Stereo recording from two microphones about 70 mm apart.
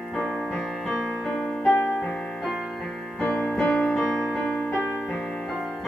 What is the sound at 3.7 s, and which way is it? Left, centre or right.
Music, centre.